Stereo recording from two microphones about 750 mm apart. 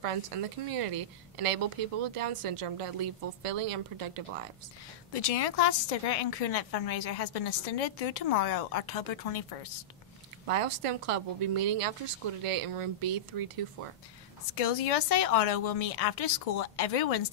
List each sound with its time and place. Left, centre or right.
0.0 s a woman's voice: right
5.1 s a woman's voice: left
10.5 s a woman's voice: right
14.5 s a woman's voice: left